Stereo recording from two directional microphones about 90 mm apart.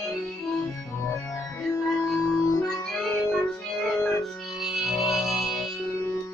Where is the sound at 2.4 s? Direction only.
35° left (ahead or behind).